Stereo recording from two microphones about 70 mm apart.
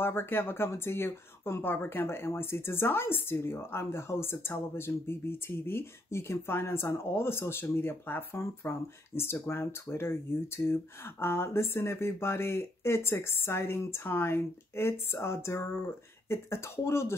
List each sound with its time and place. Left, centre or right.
0.0 s speech: left